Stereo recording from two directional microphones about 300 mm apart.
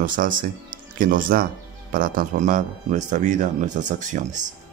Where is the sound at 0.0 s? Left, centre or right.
Right.